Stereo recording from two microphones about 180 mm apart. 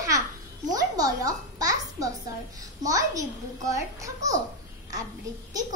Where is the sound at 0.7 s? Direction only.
20° right (ahead or behind).